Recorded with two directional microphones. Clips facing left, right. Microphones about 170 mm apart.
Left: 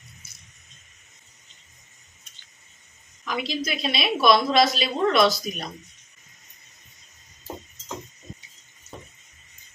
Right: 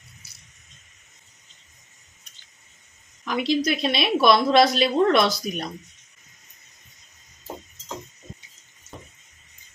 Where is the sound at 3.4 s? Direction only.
55° right (ahead or behind).